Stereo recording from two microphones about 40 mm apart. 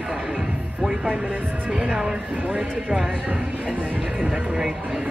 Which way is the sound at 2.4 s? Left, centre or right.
Right.